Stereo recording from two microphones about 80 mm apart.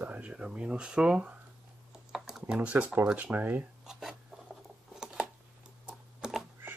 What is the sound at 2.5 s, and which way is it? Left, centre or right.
Speech, centre.